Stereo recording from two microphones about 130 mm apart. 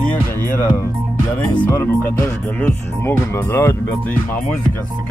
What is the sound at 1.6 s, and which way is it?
Speech, 15° left (ahead or behind).